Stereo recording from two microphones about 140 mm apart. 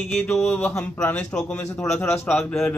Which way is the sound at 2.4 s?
5° left (ahead or behind).